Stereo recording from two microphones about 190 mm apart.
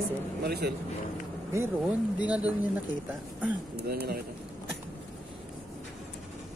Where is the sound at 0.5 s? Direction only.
55° right (ahead or behind).